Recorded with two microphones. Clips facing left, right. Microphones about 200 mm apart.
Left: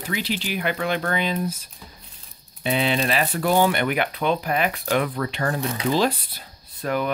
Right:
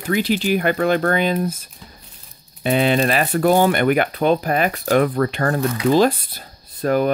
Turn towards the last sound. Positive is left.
turn(degrees=-40)  # may be behind; listen again after turning